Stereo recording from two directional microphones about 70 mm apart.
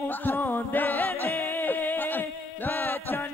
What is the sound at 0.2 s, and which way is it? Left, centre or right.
Music, left.